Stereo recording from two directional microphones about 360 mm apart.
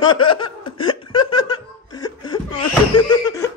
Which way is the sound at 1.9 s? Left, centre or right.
Centre.